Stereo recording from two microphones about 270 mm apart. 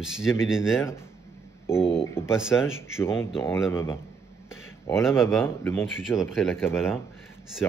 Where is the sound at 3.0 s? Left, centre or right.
Centre.